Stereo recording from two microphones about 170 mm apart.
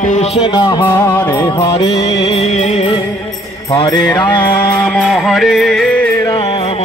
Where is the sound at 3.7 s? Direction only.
25° left (ahead or behind).